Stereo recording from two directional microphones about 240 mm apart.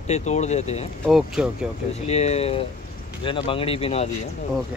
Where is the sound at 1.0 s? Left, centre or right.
Centre.